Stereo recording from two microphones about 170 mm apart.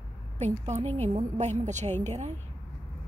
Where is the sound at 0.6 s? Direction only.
40° right (ahead or behind).